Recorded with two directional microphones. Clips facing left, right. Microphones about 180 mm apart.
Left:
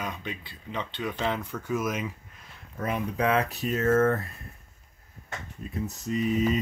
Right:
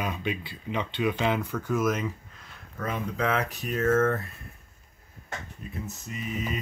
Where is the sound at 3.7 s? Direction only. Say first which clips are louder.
Left 1 dB; 35° left (ahead or behind).